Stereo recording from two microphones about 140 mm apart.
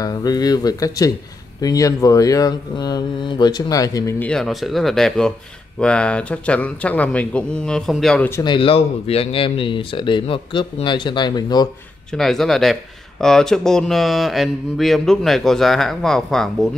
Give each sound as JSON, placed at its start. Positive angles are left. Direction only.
{"t": 0.0, "sound": "speech", "side_deg": 30}
{"t": 4.2, "sound": "speech", "side_deg": 5}
{"t": 8.5, "sound": "speech", "side_deg": 40}
{"t": 12.1, "sound": "speech", "side_deg": 0}